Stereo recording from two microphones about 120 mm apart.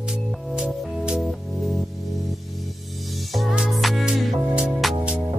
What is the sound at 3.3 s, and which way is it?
Music, 5° right (ahead or behind).